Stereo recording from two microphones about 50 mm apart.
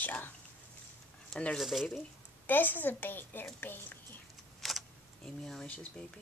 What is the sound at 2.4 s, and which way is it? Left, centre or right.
A woman's voice, left.